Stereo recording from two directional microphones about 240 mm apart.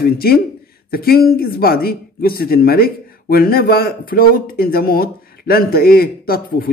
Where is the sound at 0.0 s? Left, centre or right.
Left.